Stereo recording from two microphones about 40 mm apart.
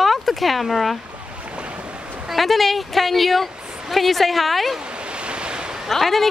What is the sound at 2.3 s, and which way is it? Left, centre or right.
A woman's voice, centre.